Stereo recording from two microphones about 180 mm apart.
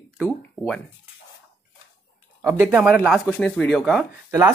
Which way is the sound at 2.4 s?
15° right (ahead or behind).